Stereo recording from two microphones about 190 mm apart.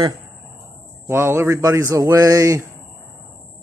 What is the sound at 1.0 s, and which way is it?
Speech, 15° right (ahead or behind).